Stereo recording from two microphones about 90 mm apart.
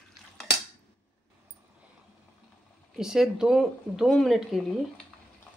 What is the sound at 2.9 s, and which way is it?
Speech, 5° right (ahead or behind).